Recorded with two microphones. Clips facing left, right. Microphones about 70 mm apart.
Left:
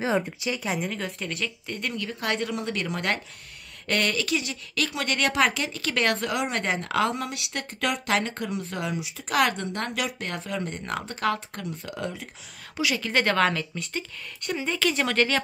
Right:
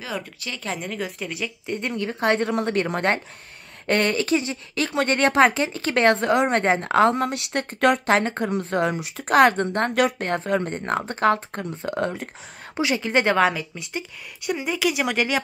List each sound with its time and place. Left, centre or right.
0.4 s speech: centre
1.8 s speech: right
12.7 s a woman's voice: right